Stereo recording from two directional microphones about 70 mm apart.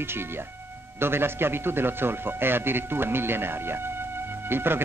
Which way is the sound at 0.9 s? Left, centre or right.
Right.